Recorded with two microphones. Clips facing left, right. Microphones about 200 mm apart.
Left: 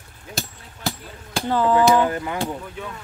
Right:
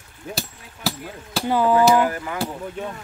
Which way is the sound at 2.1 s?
25° left (ahead or behind).